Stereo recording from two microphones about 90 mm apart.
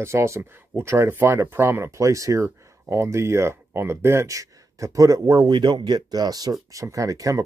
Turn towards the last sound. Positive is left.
turn(degrees=-40)  # may be behind; listen again after turning